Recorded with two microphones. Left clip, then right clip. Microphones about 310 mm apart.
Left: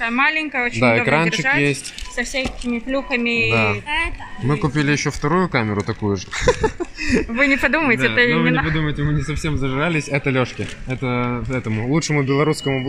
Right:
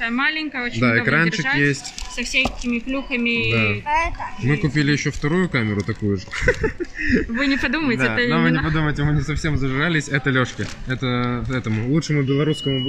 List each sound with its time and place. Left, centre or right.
0.0 s speech: centre
2.9 s speech: centre
3.8 s a child's voice: centre
4.5 s speech: centre